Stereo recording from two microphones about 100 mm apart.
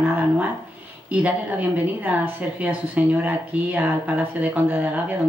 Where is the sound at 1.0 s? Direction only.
15° right (ahead or behind).